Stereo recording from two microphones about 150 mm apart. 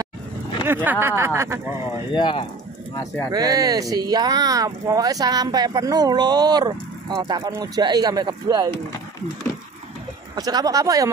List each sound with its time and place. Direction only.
0.8 s speech: 15° right (ahead or behind)
2.1 s speech: 30° left (ahead or behind)
3.3 s speech: 25° right (ahead or behind)
10.3 s speech: 25° right (ahead or behind)